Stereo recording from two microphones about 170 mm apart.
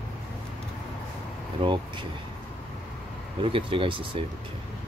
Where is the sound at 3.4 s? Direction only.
30° right (ahead or behind).